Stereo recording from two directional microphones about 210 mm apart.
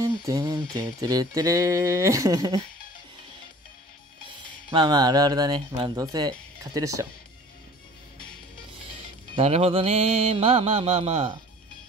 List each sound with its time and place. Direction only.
0.0 s music: 15° right (ahead or behind)
4.6 s mantra: 20° right (ahead or behind)
6.6 s music: 15° right (ahead or behind)
9.3 s mantra: 30° right (ahead or behind)